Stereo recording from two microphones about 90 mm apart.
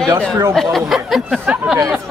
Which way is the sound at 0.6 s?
Centre (ahead or behind).